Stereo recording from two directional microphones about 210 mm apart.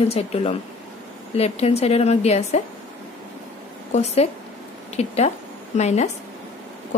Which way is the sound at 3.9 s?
30° left (ahead or behind).